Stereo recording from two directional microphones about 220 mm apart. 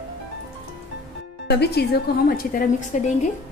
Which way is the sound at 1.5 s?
50° left (ahead or behind).